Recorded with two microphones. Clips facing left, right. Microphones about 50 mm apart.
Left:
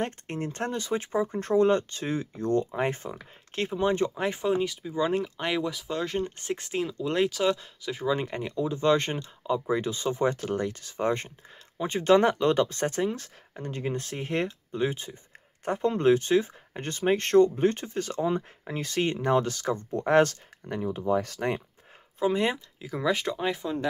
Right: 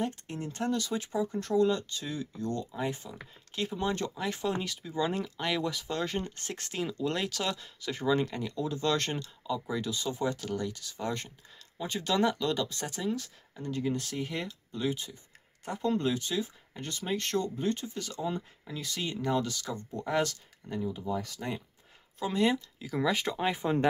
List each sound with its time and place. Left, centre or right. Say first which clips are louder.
0.0 s speech: left 3 dB; left
0.7 s speech: right 1 dB; left
3.8 s speech: left 8 dB; left
5.7 s speech: left 2 dB; centre
6.2 s speech: left 7 dB; centre
6.9 s speech: left 6 dB; centre
8.2 s speech: left 2 dB; left
9.5 s speech: left 6 dB; left
15.6 s speech: left 6 dB; left
22.2 s speech: left 3 dB; left
22.8 s speech: left 2 dB; centre
23.6 s speech: right 3 dB; right